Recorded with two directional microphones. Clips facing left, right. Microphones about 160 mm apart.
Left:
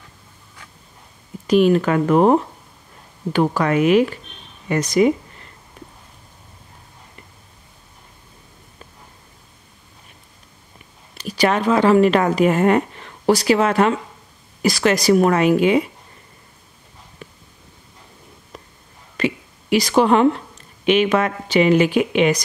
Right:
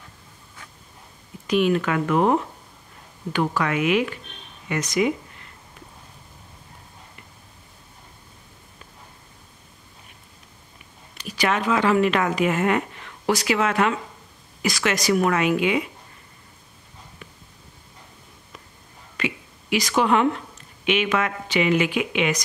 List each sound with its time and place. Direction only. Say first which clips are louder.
1.5 s speech: left 6 dB; 35° left (ahead or behind)
11.1 s speech: left 5 dB; 35° left (ahead or behind)
17.2 s a sound: left 7 dB; 35° left (ahead or behind)
19.1 s speech: left 6 dB; 35° left (ahead or behind)